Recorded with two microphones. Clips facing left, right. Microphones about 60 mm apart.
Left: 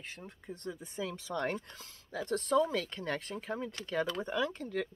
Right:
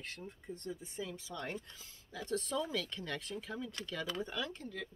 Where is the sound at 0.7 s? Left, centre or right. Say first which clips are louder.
Left 5 dB; left.